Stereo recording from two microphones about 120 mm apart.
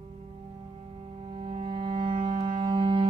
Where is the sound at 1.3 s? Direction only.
50° right (ahead or behind).